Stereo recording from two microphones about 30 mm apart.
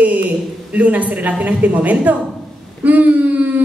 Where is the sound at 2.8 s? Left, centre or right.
Right.